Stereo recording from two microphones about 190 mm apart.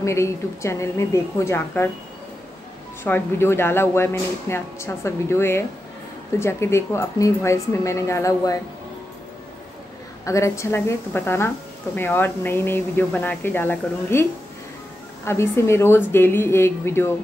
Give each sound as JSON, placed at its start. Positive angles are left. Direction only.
{"t": 0.0, "sound": "a woman's voice", "side_deg": 15}
{"t": 3.0, "sound": "a woman's voice", "side_deg": 15}
{"t": 10.2, "sound": "a woman's voice", "side_deg": 15}
{"t": 15.2, "sound": "a woman's voice", "side_deg": 15}